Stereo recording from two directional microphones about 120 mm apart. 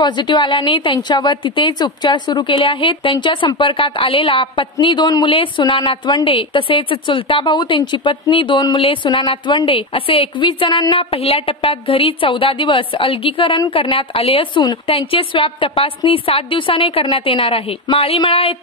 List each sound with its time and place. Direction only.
0.0 s a woman's voice: 40° left (ahead or behind)
11.1 s a woman's voice: 55° left (ahead or behind)
14.9 s a woman's voice: 50° left (ahead or behind)